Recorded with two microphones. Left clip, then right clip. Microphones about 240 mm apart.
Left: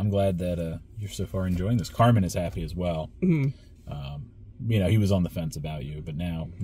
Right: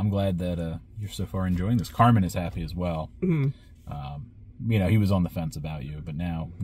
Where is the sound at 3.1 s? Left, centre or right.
Centre.